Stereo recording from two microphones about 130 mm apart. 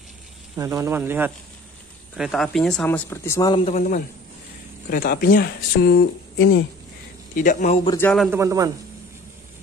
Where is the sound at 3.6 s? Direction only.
75° left (ahead or behind).